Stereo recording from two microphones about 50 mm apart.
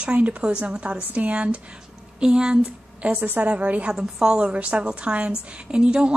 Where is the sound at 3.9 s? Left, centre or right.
Centre.